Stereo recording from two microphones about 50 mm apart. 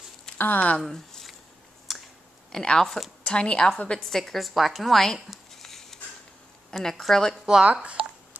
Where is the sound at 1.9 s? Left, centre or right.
Centre.